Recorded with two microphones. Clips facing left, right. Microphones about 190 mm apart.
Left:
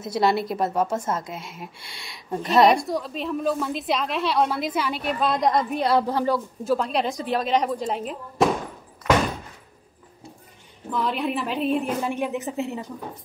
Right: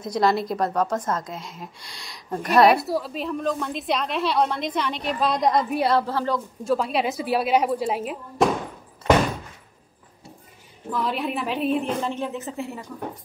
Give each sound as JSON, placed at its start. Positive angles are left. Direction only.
{"t": 0.0, "sound": "a woman's voice", "side_deg": 5}
{"t": 5.9, "sound": "a woman's voice", "side_deg": 15}
{"t": 9.0, "sound": "door", "side_deg": -30}
{"t": 10.9, "sound": "a woman's voice", "side_deg": 0}